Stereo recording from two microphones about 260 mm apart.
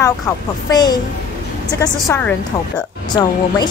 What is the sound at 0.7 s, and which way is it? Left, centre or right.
A woman's voice, centre.